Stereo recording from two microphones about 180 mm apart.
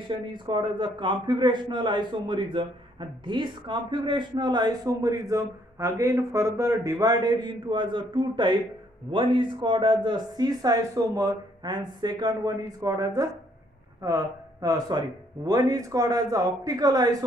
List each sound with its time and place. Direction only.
0.1 s a man's voice: 25° right (ahead or behind)